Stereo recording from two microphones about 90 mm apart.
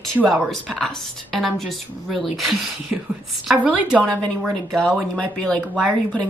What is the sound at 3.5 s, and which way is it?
Speech, 15° right (ahead or behind).